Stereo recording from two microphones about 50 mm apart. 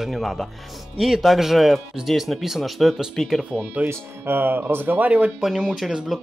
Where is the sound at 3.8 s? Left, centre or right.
Right.